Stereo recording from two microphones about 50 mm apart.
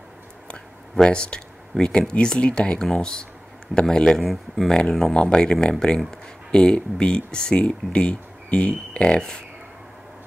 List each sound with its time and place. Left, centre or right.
0.9 s speech: centre
4.6 s speech: centre
5.1 s speech: centre